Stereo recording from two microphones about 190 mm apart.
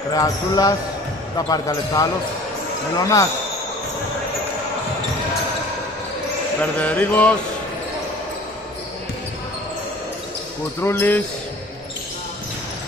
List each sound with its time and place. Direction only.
0.1 s speech: 20° left (ahead or behind)
3.0 s mantra: 15° left (ahead or behind)
6.6 s mantra: 10° left (ahead or behind)
10.8 s mantra: 10° left (ahead or behind)